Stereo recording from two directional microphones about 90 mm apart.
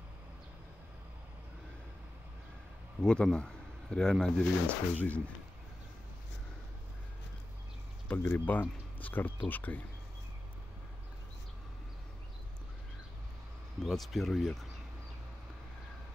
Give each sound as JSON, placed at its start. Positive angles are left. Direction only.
{"t": 3.0, "sound": "speech", "side_deg": 10}
{"t": 8.1, "sound": "speech", "side_deg": 20}
{"t": 13.8, "sound": "speech", "side_deg": 0}